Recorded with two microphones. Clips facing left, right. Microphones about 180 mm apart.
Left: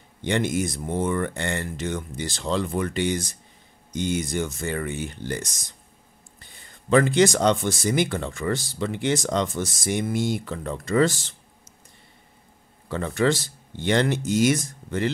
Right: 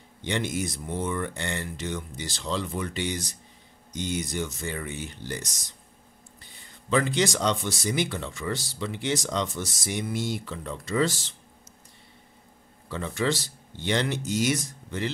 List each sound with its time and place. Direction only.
0.2 s speech: 50° left (ahead or behind)
6.9 s speech: 50° left (ahead or behind)
12.9 s speech: 50° left (ahead or behind)